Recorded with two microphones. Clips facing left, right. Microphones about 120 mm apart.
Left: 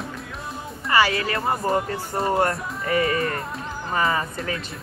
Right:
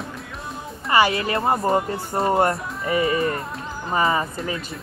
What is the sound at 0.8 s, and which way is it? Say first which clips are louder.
Speech: right 2 dB; 25° right (ahead or behind).